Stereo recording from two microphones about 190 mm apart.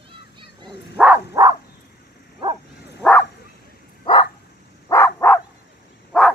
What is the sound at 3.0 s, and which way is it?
Bow-wow, 5° left (ahead or behind).